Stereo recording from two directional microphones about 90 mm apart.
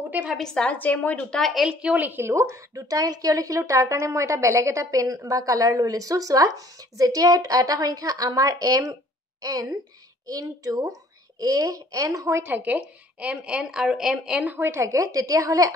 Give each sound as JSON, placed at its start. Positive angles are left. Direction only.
{"t": 0.4, "sound": "a woman's voice", "side_deg": 10}
{"t": 1.3, "sound": "a woman's voice", "side_deg": 0}
{"t": 12.4, "sound": "speech", "side_deg": -20}
{"t": 14.7, "sound": "a woman's voice", "side_deg": -35}